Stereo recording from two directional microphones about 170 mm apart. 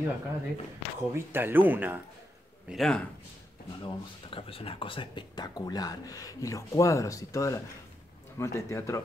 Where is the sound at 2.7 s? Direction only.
Centre (ahead or behind).